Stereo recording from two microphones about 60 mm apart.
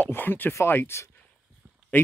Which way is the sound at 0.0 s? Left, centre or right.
Left.